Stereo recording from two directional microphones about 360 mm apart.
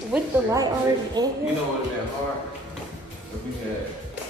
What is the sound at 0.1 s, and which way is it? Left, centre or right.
A woman's voice, centre.